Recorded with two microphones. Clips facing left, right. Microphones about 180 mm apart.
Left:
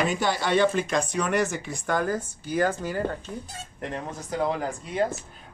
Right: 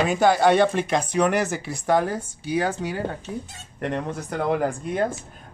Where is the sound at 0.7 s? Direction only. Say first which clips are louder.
Right 4 dB; 65° right (ahead or behind).